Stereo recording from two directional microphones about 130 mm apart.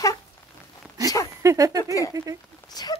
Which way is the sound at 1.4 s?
25° right (ahead or behind).